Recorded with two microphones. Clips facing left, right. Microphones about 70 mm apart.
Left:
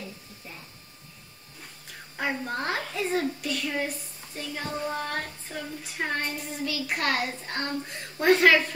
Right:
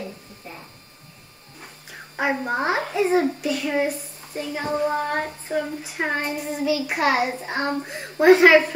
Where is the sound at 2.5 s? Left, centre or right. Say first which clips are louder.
Right 7 dB; centre.